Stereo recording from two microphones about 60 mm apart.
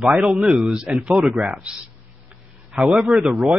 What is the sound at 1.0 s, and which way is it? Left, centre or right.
Speech, centre.